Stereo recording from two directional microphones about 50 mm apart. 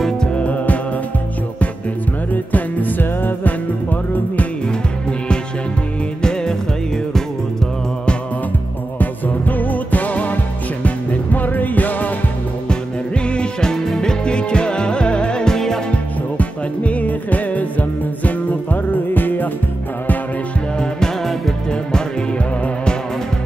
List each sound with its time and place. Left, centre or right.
0.4 s music: left
2.3 s music: left
6.2 s music: centre
8.9 s music: left
12.6 s music: left
15.9 s music: left
21.0 s music: centre